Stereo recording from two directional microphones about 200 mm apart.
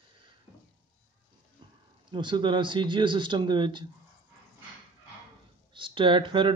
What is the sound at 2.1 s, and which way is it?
Speech, 25° right (ahead or behind).